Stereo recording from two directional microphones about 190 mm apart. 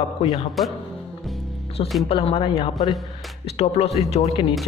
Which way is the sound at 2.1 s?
30° left (ahead or behind).